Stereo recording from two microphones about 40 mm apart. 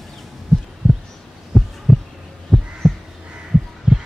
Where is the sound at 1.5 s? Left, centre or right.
Centre.